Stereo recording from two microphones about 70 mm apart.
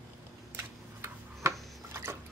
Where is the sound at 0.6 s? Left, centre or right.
Right.